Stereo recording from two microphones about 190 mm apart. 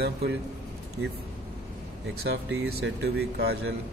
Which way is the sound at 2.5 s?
65° right (ahead or behind).